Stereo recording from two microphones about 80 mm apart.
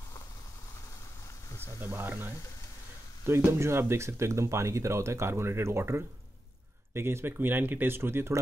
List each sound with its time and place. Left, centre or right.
1.8 s speech: right